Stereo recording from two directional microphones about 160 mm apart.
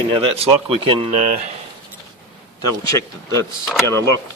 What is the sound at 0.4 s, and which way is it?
Speech, 35° right (ahead or behind).